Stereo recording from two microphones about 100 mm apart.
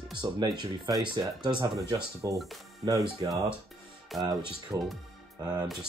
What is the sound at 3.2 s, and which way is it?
Speech, 45° right (ahead or behind).